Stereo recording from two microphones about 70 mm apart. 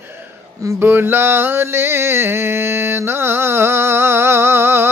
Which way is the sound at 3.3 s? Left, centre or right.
Right.